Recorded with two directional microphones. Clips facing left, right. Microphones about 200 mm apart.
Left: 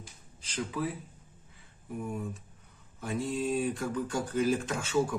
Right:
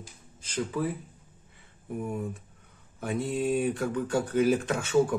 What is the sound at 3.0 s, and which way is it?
Speech, 60° right (ahead or behind).